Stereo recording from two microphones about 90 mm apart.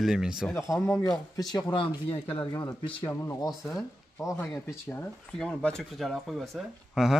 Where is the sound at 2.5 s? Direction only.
60° left (ahead or behind).